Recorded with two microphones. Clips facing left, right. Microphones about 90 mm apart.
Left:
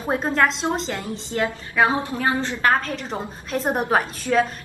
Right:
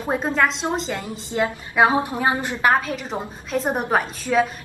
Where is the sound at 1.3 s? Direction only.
20° right (ahead or behind).